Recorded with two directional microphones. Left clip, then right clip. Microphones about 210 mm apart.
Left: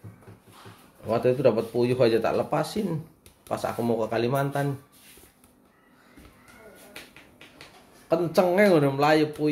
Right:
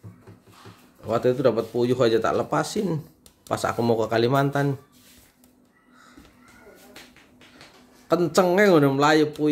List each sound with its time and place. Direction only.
1.0 s speech: 10° right (ahead or behind)
3.4 s speech: 40° right (ahead or behind)
8.1 s speech: 30° right (ahead or behind)